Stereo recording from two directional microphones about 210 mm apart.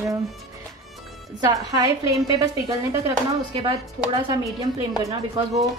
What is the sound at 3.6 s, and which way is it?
A woman's voice, 20° right (ahead or behind).